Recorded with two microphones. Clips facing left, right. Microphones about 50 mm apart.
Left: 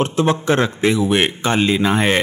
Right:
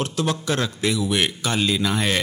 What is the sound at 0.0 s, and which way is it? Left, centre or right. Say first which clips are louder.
A man's voice: left 7 dB; left.